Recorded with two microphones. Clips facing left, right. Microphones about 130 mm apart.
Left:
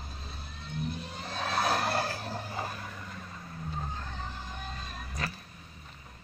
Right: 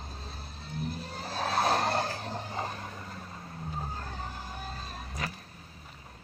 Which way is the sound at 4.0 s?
40° right (ahead or behind).